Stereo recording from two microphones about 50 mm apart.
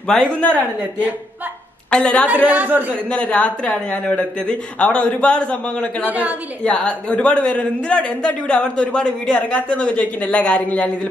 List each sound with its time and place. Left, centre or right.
0.1 s a woman's voice: centre
0.6 s a man's voice: right
1.9 s a man's voice: left
2.2 s a man's voice: right
3.1 s a man's voice: left
6.0 s a man's voice: right
6.6 s a man's voice: left